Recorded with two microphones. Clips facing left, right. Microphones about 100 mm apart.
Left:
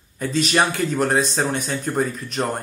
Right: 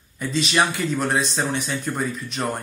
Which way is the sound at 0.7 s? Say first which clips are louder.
Left 3 dB; 40° left (ahead or behind).